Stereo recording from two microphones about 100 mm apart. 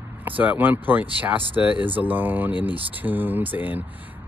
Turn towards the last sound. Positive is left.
turn(degrees=-15)  # may be behind; listen again after turning